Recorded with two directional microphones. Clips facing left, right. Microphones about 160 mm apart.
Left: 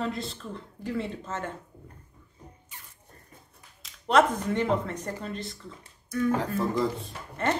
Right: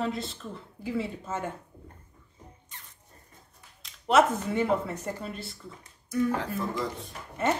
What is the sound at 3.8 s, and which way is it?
Speech, 5° right (ahead or behind).